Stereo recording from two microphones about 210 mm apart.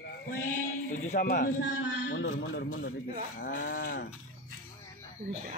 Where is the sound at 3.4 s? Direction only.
40° left (ahead or behind).